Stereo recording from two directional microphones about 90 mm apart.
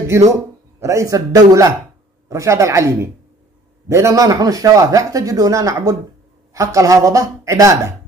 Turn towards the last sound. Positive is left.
turn(degrees=-35)  # may be behind; listen again after turning